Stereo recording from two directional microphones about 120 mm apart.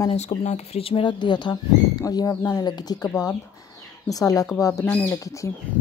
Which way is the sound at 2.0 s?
30° left (ahead or behind).